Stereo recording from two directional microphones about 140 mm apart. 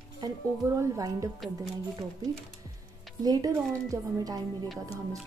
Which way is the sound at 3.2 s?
25° right (ahead or behind).